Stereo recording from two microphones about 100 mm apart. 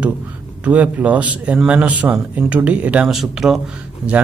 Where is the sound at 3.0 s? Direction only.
5° right (ahead or behind).